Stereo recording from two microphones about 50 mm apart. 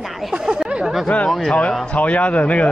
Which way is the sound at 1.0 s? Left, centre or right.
Left.